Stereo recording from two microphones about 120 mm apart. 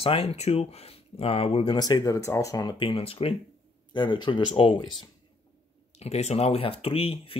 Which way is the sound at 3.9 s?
40° left (ahead or behind).